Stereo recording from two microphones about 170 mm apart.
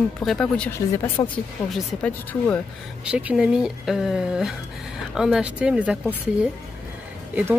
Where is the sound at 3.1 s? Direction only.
5° right (ahead or behind).